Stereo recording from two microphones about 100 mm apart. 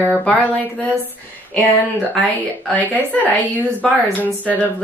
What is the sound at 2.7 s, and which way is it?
Speech, 15° left (ahead or behind).